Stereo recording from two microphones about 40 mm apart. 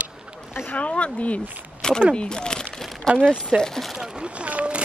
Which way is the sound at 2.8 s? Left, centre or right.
Centre.